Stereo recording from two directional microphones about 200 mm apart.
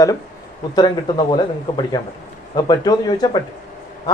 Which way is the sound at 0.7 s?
20° left (ahead or behind).